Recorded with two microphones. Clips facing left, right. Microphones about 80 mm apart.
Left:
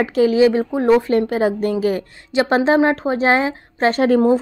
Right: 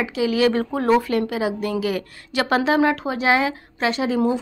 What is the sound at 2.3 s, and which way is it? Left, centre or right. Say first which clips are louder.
A woman's voice: left 4 dB; left.